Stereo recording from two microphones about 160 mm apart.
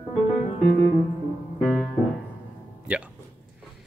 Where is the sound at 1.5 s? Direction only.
5° left (ahead or behind).